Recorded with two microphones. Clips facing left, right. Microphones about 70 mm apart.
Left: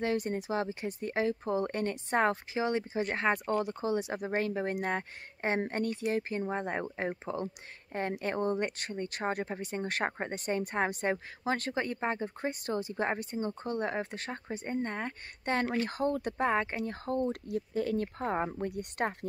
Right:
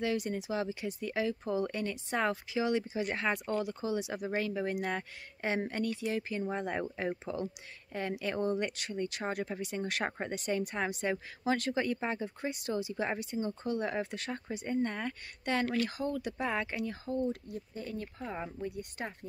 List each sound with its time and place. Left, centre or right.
0.0 s speech: left
15.9 s speech: left